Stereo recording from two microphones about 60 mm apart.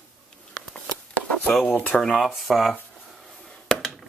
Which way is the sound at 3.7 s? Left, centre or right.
Centre.